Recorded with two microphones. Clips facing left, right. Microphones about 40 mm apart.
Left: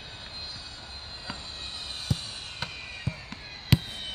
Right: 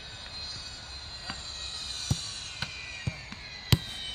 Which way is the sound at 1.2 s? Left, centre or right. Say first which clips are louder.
Left 1 dB; centre.